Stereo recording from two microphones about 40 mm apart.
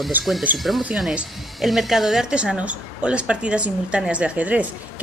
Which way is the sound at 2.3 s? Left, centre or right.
Right.